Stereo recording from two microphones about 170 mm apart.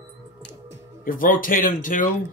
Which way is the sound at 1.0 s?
55° left (ahead or behind).